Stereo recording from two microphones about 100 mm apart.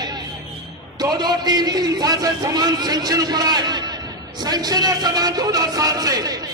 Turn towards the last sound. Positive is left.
turn(degrees=-40)  # may be behind; listen again after turning